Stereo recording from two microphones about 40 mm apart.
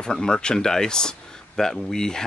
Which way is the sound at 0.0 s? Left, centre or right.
Centre.